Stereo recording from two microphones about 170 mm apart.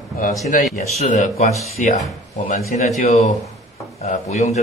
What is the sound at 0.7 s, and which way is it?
Speech, 40° left (ahead or behind).